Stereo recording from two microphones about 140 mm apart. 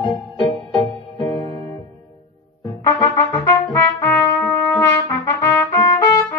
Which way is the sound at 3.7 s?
20° left (ahead or behind).